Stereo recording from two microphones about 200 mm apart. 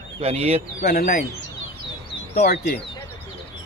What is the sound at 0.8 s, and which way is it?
Speech, 50° left (ahead or behind).